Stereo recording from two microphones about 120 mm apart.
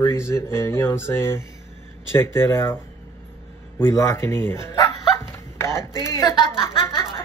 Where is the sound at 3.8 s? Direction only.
25° left (ahead or behind).